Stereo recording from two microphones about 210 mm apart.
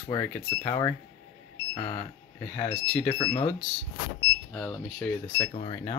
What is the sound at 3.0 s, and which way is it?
Speech, 25° left (ahead or behind).